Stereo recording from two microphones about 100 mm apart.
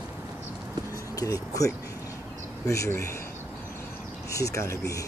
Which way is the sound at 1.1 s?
35° left (ahead or behind).